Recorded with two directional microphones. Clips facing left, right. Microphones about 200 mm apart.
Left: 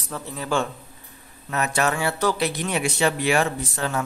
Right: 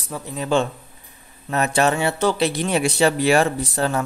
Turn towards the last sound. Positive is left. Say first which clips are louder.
# right 5 dB
turn(degrees=-35)  # may be behind; listen again after turning